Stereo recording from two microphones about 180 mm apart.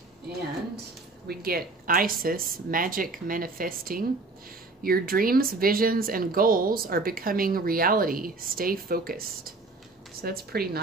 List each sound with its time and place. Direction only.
1.2 s a woman's voice: 60° right (ahead or behind)